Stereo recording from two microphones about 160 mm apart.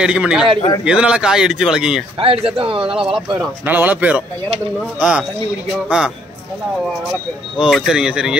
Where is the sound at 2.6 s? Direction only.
35° right (ahead or behind).